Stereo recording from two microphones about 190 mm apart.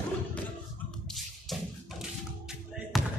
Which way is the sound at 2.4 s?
5° right (ahead or behind).